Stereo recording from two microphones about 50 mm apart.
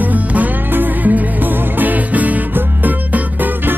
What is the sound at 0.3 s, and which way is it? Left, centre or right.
Music, right.